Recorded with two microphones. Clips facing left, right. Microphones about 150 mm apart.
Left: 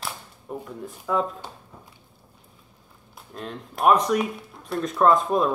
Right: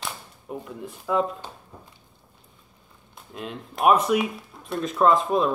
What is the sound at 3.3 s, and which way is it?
Speech, 5° right (ahead or behind).